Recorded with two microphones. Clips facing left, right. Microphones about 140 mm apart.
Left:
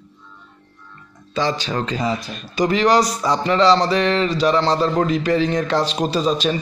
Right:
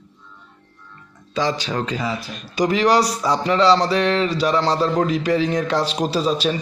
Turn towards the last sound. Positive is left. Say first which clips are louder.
# left 1 dB
turn(degrees=-5)  # may be behind; listen again after turning